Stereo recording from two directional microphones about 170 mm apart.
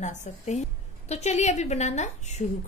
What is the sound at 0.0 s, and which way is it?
A woman's voice, 45° left (ahead or behind).